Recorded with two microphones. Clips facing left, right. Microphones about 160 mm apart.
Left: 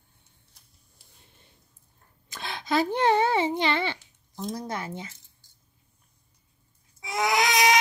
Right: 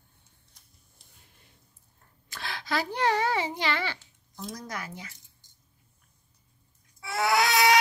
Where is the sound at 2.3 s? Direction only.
20° left (ahead or behind).